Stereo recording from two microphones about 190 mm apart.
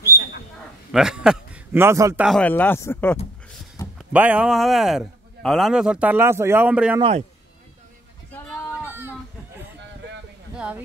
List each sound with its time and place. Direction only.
0.9 s a man's voice: 5° right (ahead or behind)
2.2 s speech: 5° left (ahead or behind)
4.1 s speech: 5° right (ahead or behind)
7.0 s a man's voice: 30° right (ahead or behind)
8.8 s a sound: 10° right (ahead or behind)
10.5 s a sound: 5° right (ahead or behind)